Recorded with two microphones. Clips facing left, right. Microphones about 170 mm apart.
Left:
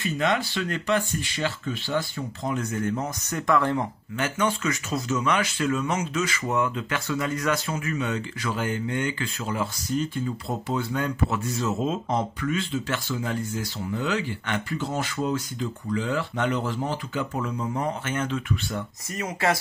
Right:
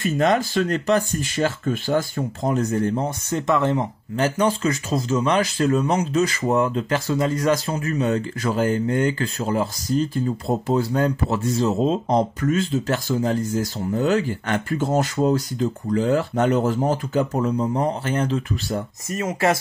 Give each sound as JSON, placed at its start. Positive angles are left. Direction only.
{"t": 0.0, "sound": "speech", "side_deg": -45}
{"t": 4.2, "sound": "speech", "side_deg": -35}
{"t": 19.0, "sound": "speech", "side_deg": -25}